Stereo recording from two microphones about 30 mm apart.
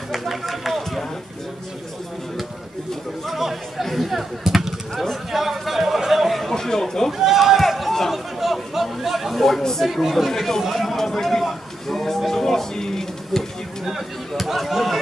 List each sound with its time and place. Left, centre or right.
0.1 s run: centre
3.3 s speech: centre
5.1 s chatter: centre
6.5 s speech: centre
7.1 s a sound: centre
7.8 s a sound: centre
8.1 s chatter: centre
9.0 s speech: centre
9.6 s speech: centre
9.8 s speech: centre
11.9 s a sound: centre
13.8 s speech: centre